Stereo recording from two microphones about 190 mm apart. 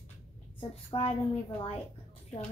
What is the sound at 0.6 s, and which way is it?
Speech, 30° left (ahead or behind).